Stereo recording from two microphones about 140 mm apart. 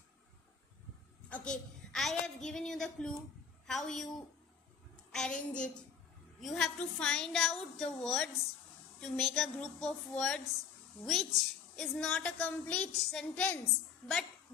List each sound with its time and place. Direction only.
1.3 s a woman's voice: 5° left (ahead or behind)
5.1 s a woman's voice: 5° left (ahead or behind)